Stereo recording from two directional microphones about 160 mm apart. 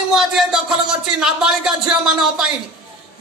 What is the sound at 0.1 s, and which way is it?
A man's voice, 5° right (ahead or behind).